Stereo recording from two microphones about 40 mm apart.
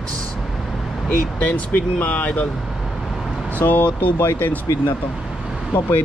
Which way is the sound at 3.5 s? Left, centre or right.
Left.